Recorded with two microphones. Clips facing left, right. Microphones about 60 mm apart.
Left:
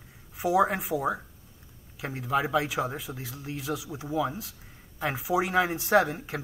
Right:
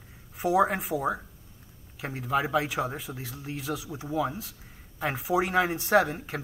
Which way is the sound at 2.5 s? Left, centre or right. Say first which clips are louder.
Even; right.